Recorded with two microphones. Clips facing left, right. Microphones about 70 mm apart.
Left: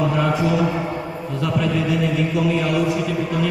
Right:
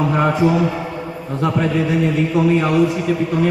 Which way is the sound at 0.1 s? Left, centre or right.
Right.